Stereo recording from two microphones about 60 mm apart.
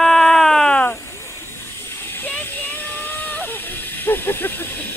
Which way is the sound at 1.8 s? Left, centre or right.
Left.